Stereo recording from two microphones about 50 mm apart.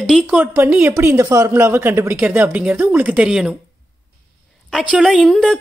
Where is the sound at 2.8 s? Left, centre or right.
Right.